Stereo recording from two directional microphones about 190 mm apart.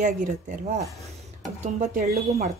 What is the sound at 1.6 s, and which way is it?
Speech, 40° right (ahead or behind).